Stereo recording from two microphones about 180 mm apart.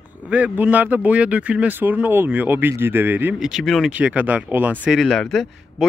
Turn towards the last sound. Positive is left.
turn(degrees=0)  # may be behind; listen again after turning